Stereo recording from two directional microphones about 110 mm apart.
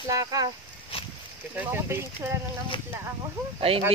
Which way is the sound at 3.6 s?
60° right (ahead or behind).